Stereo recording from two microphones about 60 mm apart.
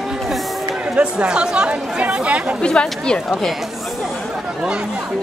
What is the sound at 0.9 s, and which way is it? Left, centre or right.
Speech, centre.